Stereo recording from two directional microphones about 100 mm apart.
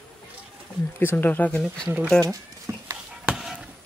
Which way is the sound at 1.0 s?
20° left (ahead or behind).